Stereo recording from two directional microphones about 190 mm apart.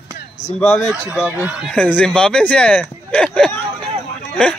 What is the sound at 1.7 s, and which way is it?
Speech, 5° left (ahead or behind).